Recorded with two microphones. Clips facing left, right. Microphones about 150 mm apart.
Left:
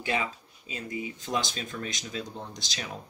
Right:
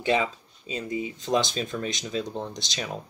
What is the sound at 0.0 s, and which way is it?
Speech, 25° right (ahead or behind).